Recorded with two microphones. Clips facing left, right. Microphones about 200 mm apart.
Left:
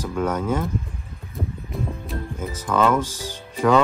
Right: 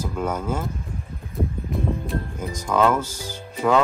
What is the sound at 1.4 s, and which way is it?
Music, 15° right (ahead or behind).